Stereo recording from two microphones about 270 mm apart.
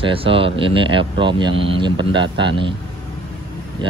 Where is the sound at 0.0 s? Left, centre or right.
Centre.